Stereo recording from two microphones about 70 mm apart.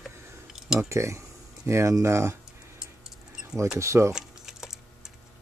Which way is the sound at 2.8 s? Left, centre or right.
Centre.